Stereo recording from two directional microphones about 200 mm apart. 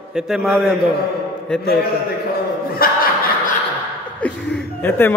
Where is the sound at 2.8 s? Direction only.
50° left (ahead or behind).